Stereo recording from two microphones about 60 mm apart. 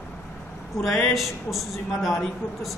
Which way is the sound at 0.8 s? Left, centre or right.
Centre.